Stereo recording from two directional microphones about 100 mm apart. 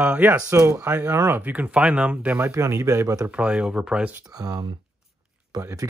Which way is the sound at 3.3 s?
10° right (ahead or behind).